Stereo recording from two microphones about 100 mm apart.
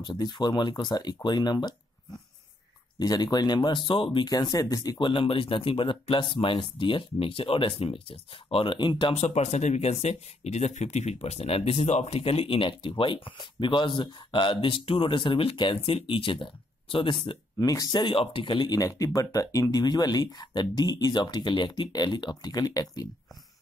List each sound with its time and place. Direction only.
0.0 s speech: 50° left (ahead or behind)
3.0 s speech: 40° left (ahead or behind); by 4.2 s 60° left (ahead or behind)
4.2 s speech: 40° left (ahead or behind)
4.9 s speech: 55° left (ahead or behind)
9.1 s speech: 90° left; by 17.4 s 55° left (ahead or behind)
17.6 s speech: 40° left (ahead or behind)
18.0 s speech: 65° left (ahead or behind); by 23.0 s 40° left (ahead or behind)